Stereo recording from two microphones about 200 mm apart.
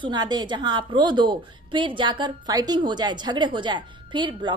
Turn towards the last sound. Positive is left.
turn(degrees=-25)  # may be behind; listen again after turning